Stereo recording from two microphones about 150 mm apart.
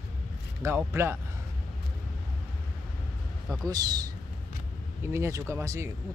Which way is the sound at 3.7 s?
25° right (ahead or behind).